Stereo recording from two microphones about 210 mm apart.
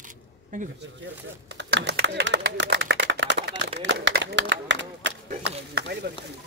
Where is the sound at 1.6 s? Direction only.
55° right (ahead or behind).